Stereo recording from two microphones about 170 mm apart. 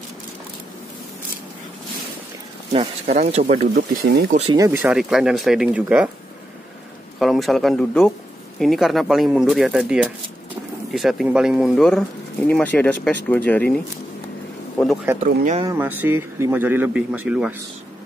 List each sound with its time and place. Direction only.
2.7 s speech: 35° right (ahead or behind)
3.7 s speech: 70° right (ahead or behind)
4.5 s speech: 20° right (ahead or behind)
4.8 s speech: 5° right (ahead or behind)
7.2 s speech: centre (ahead or behind)
15.2 s speech: 50° right (ahead or behind)
15.8 s a man's voice: 10° right (ahead or behind)